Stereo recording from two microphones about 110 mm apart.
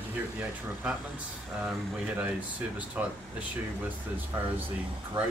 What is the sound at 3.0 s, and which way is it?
Speech, 10° right (ahead or behind).